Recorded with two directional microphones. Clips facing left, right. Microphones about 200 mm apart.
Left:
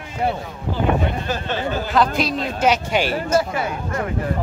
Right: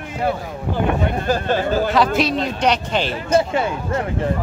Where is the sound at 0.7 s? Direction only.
45° right (ahead or behind).